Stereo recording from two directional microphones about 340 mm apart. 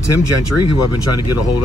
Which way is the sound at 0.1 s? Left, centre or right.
Left.